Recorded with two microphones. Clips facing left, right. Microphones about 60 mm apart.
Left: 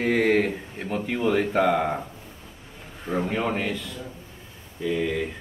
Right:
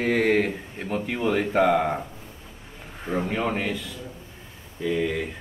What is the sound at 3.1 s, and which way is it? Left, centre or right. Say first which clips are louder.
Speech: even; centre.